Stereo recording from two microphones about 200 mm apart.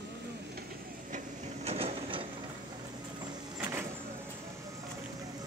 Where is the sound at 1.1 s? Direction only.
30° right (ahead or behind).